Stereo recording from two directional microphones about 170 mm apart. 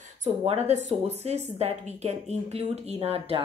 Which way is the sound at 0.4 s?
35° right (ahead or behind).